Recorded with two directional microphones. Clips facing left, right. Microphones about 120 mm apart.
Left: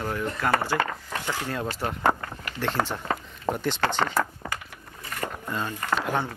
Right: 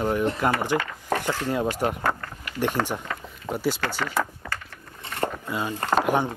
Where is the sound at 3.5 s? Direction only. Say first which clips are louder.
Right 1 dB; 5° right (ahead or behind).